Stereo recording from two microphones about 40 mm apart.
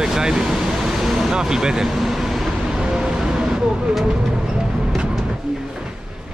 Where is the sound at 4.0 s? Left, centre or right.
Centre.